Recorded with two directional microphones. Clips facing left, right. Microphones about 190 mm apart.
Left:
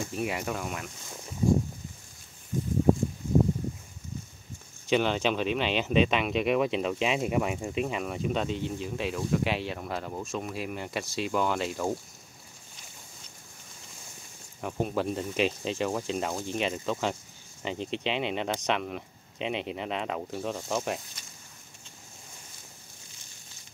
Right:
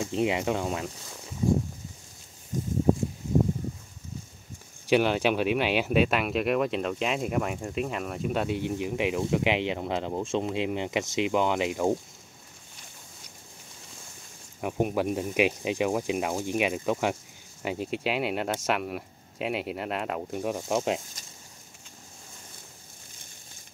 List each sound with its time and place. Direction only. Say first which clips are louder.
0.0 s speech: right 5 dB; 20° right (ahead or behind)
4.8 s speech: right 3 dB; 10° right (ahead or behind)
14.6 s speech: right 3 dB; 15° right (ahead or behind)